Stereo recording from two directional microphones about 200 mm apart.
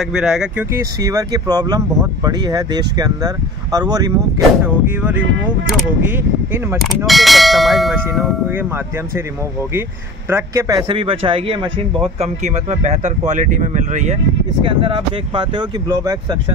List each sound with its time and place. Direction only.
0.0 s speech: 5° right (ahead or behind)
5.2 s speech: 70° right (ahead or behind)
5.7 s clang: centre (ahead or behind)
6.1 s speech: 10° right (ahead or behind)
7.1 s clang: centre (ahead or behind)
10.3 s speech: 15° right (ahead or behind); by 14.1 s 35° right (ahead or behind)
14.6 s speech: 25° right (ahead or behind)